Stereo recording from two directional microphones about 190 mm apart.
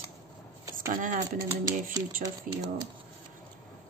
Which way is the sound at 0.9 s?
45° right (ahead or behind).